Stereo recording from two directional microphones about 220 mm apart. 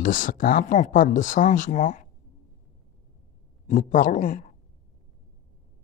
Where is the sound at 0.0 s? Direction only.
35° left (ahead or behind).